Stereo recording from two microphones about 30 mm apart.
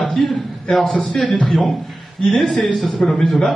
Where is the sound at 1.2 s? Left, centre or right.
Left.